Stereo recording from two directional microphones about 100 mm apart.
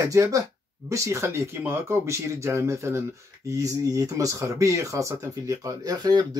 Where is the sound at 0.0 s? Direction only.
35° right (ahead or behind).